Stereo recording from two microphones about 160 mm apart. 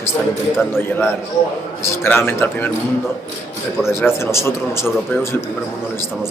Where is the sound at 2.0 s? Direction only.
15° left (ahead or behind).